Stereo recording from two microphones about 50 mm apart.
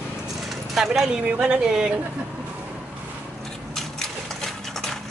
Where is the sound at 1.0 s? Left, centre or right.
Centre.